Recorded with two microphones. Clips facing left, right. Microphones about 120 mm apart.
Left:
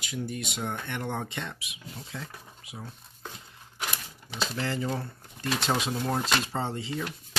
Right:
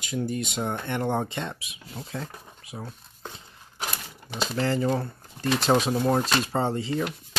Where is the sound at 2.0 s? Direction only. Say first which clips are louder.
Right 6 dB; 45° right (ahead or behind).